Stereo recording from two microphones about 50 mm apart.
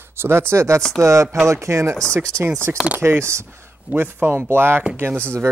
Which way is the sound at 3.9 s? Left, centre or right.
Right.